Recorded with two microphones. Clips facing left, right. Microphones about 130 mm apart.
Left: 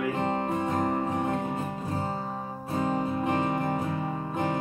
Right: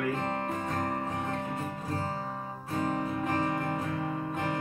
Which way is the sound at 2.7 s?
25° left (ahead or behind).